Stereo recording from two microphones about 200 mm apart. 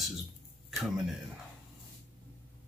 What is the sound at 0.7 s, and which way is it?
Speech, centre (ahead or behind).